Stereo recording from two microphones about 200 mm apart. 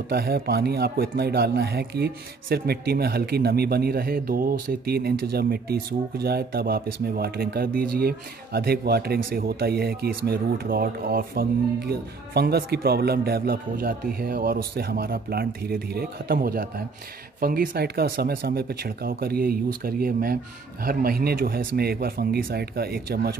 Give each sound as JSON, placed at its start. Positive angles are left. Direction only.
{"t": 0.1, "sound": "speech", "side_deg": -50}